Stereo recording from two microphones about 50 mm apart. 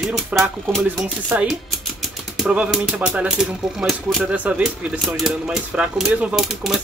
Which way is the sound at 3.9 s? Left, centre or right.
Centre.